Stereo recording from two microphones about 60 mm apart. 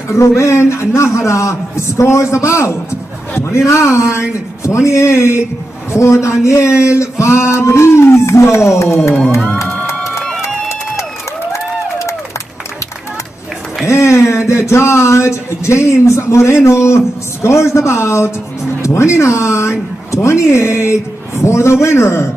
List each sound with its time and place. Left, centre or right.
0.4 s speech: left
10.4 s a sound: left
13.8 s speech: left